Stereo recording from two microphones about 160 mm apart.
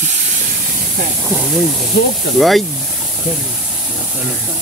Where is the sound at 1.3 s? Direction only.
5° right (ahead or behind).